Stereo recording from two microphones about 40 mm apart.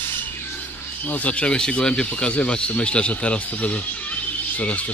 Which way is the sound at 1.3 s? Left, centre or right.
Left.